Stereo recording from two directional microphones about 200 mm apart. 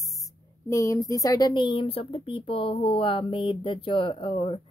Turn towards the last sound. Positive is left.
turn(degrees=25)  # may be behind; listen again after turning